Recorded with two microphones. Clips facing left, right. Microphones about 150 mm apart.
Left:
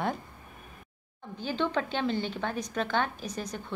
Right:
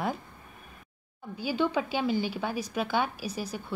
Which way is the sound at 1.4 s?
10° right (ahead or behind).